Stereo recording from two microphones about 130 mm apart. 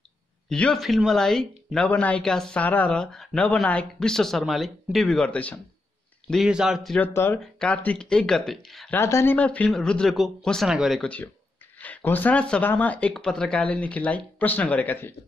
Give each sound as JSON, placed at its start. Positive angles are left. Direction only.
{"t": 0.5, "sound": "speech", "side_deg": 5}
{"t": 6.3, "sound": "speech", "side_deg": -5}
{"t": 7.0, "sound": "speech", "side_deg": 15}
{"t": 8.9, "sound": "speech", "side_deg": 20}
{"t": 11.8, "sound": "speech", "side_deg": 15}